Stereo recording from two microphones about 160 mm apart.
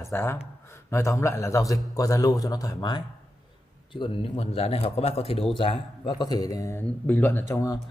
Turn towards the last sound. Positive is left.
turn(degrees=20)  # may be behind; listen again after turning